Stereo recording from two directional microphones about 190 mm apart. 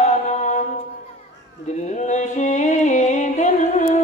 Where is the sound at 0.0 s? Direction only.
40° left (ahead or behind).